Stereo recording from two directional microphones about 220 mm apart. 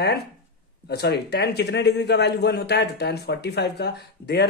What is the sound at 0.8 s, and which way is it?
A man's voice, 45° left (ahead or behind).